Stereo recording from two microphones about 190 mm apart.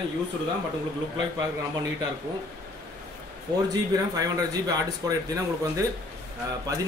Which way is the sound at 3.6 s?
20° right (ahead or behind).